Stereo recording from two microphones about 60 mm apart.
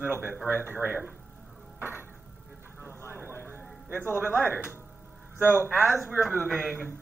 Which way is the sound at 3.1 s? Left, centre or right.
Right.